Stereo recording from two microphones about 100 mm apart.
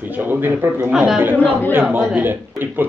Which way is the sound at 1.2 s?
20° right (ahead or behind).